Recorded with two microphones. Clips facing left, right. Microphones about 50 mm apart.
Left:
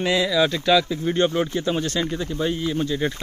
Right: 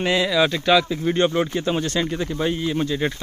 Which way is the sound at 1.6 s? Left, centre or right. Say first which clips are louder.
Right 1 dB; right.